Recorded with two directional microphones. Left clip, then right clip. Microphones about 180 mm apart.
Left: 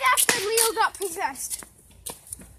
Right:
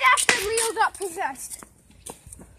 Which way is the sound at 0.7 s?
40° right (ahead or behind).